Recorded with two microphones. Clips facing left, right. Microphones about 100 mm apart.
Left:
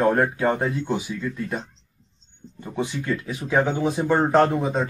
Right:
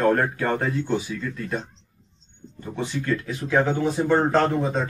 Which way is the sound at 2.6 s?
10° left (ahead or behind).